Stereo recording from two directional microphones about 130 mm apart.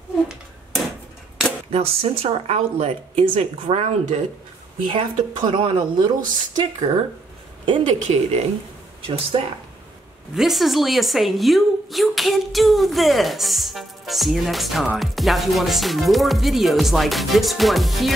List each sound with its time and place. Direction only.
1.7 s speech: 50° right (ahead or behind)
4.9 s a woman's voice: 40° right (ahead or behind)
7.8 s speech: 60° right (ahead or behind)
10.3 s a woman's voice: centre (ahead or behind)